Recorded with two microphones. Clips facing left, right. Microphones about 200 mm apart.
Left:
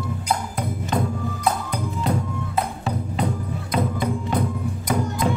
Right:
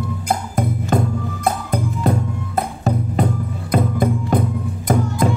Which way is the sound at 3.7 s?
50° right (ahead or behind).